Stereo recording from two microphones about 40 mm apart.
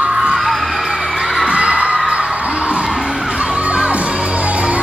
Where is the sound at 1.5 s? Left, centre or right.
Right.